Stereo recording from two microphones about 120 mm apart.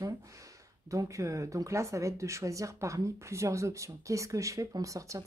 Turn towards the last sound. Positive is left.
turn(degrees=-25)  # may be behind; listen again after turning